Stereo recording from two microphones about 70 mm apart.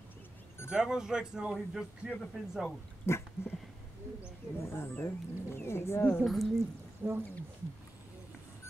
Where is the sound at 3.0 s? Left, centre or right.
Left.